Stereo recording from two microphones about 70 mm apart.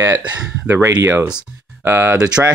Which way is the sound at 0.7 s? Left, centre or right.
Right.